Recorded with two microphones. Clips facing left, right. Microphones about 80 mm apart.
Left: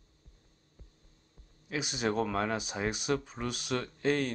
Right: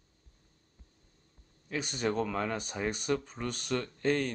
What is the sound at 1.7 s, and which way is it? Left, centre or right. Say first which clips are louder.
Speech: even; centre.